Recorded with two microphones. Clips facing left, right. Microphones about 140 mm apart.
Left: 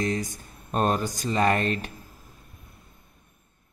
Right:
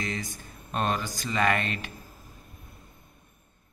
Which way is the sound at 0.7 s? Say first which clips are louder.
Left 4 dB; 40° left (ahead or behind).